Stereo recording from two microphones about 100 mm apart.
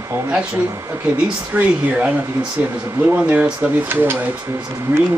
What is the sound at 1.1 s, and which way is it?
Speech, 10° right (ahead or behind).